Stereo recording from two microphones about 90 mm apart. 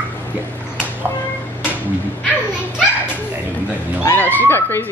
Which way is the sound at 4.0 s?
25° left (ahead or behind).